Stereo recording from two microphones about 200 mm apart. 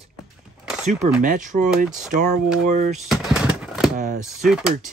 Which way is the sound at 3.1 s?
Centre (ahead or behind).